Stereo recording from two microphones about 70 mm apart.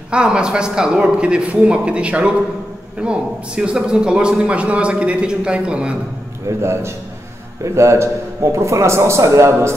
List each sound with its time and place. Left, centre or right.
0.1 s a man's voice: centre
6.6 s a man's voice: right